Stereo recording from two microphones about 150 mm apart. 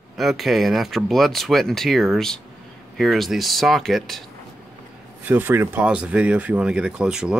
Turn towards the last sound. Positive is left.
turn(degrees=-5)  # may be behind; listen again after turning